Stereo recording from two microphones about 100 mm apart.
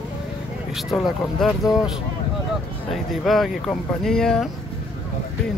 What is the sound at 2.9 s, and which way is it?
Speech, centre (ahead or behind).